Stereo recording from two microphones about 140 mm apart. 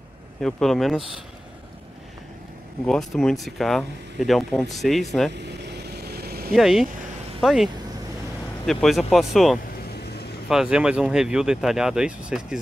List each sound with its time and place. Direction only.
0.4 s speech: centre (ahead or behind)
2.9 s speech: 5° left (ahead or behind)
6.1 s vehicle: 90° right
6.5 s speech: centre (ahead or behind)